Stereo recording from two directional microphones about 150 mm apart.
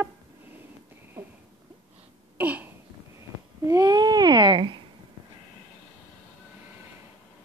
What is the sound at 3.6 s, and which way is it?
Babbling, 25° right (ahead or behind).